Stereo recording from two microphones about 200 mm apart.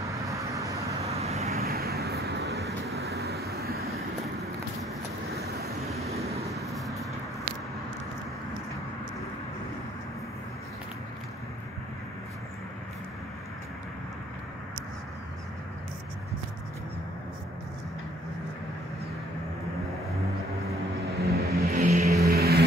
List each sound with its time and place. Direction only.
0.1 s vehicle: 15° right (ahead or behind)
1.1 s vehicle: 30° right (ahead or behind)
1.5 s vehicle: 50° right (ahead or behind)
5.9 s vehicle: 30° right (ahead or behind)
6.5 s vehicle: centre (ahead or behind)
21.2 s vehicle: 50° right (ahead or behind)